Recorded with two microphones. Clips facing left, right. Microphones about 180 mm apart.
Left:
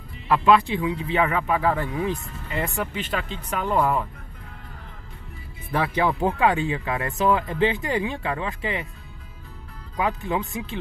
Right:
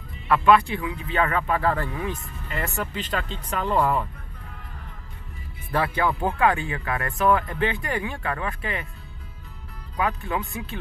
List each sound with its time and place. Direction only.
0.3 s speech: 20° left (ahead or behind)
1.1 s speech: 10° left (ahead or behind)
2.0 s speech: 20° left (ahead or behind)
5.9 s speech: 25° left (ahead or behind)
9.9 s speech: 20° left (ahead or behind)